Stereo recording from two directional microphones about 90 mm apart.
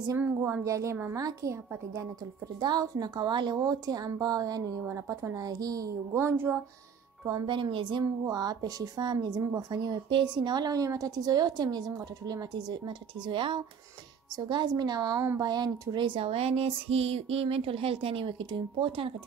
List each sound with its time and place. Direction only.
0.2 s speech: 20° right (ahead or behind)
0.7 s a woman's voice: 35° right (ahead or behind)
2.6 s a woman's voice: 50° right (ahead or behind)
3.5 s a woman's voice: 45° right (ahead or behind)
4.8 s a woman's voice: 35° right (ahead or behind)
6.1 s speech: 25° right (ahead or behind)
7.4 s speech: 60° right (ahead or behind)
8.3 s a woman's voice: 45° right (ahead or behind); by 13.6 s 65° right (ahead or behind)
14.3 s a woman's voice: 55° right (ahead or behind)
15.9 s speech: 65° right (ahead or behind); by 19.1 s 85° right